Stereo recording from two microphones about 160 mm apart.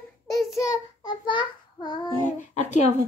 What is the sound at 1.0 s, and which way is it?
Child singing, 30° left (ahead or behind).